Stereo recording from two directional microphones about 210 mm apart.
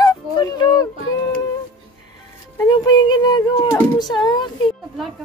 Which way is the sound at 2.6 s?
20° left (ahead or behind).